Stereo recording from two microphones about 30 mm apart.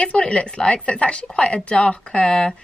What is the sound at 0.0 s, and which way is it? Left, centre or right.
A woman's voice, left.